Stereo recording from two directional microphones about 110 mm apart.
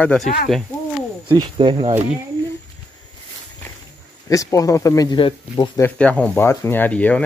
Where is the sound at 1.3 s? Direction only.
50° right (ahead or behind).